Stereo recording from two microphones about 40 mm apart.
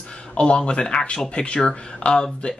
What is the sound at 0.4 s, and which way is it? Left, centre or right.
Speech, left.